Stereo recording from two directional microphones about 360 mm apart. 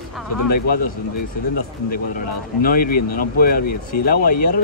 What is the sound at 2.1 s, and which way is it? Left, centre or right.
Speech, left.